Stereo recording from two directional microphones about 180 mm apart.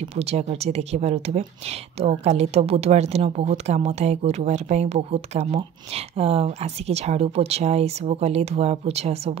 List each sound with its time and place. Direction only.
0.1 s speech: 35° right (ahead or behind)